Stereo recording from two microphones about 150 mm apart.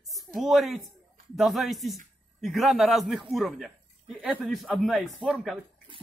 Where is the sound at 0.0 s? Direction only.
Centre (ahead or behind).